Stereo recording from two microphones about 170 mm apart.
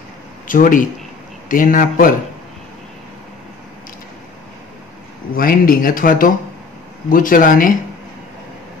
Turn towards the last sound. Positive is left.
turn(degrees=55)  # may be behind; listen again after turning